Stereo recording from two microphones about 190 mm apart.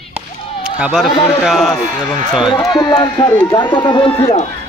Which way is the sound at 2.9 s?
20° left (ahead or behind).